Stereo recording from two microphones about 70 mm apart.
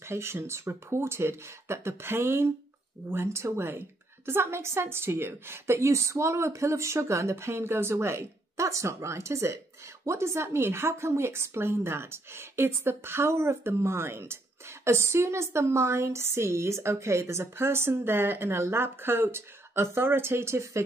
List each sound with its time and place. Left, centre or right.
0.0 s a woman's voice: right